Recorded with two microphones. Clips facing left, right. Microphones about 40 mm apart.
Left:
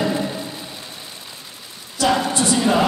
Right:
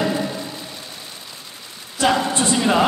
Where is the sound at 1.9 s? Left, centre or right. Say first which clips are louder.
Even; right.